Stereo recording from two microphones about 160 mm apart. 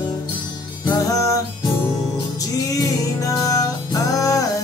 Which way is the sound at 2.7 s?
20° left (ahead or behind).